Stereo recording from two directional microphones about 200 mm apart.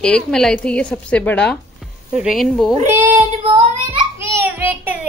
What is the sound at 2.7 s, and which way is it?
Speech, 35° right (ahead or behind).